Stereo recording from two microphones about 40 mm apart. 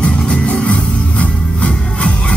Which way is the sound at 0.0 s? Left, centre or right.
Left.